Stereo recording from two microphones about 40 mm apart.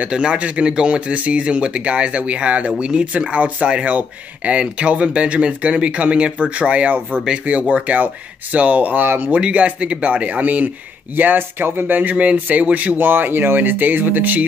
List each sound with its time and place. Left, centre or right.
0.1 s speech: right
9.3 s speech: right
11.1 s speech: right
12.9 s speech: right